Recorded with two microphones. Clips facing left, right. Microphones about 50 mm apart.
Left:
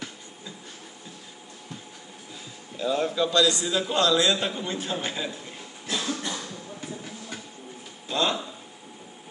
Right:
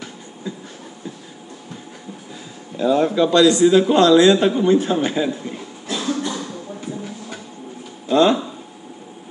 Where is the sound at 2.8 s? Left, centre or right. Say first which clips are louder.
Right 9 dB; right.